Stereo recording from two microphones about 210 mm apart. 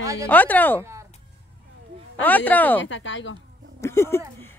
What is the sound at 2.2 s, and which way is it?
Livestock, 10° left (ahead or behind).